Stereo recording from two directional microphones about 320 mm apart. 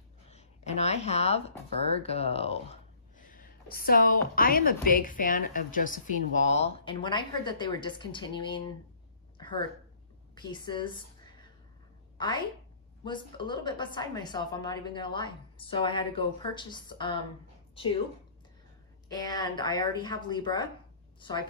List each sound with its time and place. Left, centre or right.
0.3 s a sound: left
1.8 s speech: centre
9.4 s a sound: centre
10.3 s a woman's voice: centre
13.0 s a woman's voice: centre
19.0 s a woman's voice: centre